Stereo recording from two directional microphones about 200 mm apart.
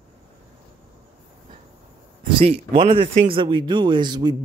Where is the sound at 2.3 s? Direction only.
30° right (ahead or behind).